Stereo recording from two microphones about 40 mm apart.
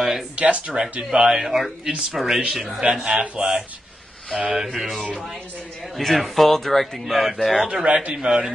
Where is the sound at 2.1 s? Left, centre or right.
Centre.